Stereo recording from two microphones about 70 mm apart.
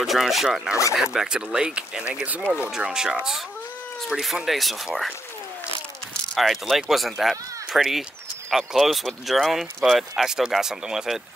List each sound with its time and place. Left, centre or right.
0.0 s speech: centre; by 2.5 s right
2.8 s speech: centre
6.3 s speech: centre